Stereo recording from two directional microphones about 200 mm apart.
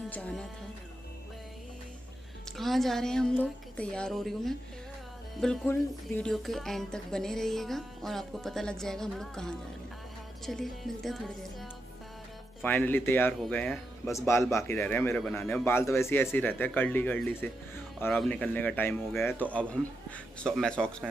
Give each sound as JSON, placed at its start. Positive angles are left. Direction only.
{"t": 0.1, "sound": "music", "side_deg": 5}
{"t": 2.5, "sound": "speech", "side_deg": 0}
{"t": 12.6, "sound": "speech", "side_deg": 10}
{"t": 14.1, "sound": "speech", "side_deg": 15}